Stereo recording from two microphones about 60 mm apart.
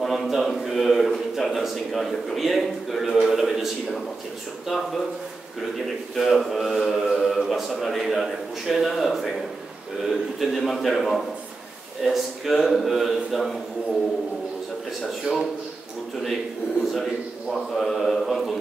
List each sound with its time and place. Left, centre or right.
0.0 s a man's voice: centre
6.1 s a man's voice: centre
15.3 s a man's voice: centre
17.7 s a man's voice: centre